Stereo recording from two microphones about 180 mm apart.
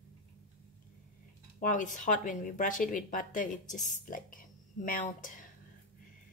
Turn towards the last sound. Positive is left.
turn(degrees=50)  # may be behind; listen again after turning